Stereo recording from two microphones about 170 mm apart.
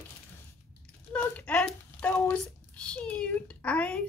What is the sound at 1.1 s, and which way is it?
A child's voice, 5° left (ahead or behind).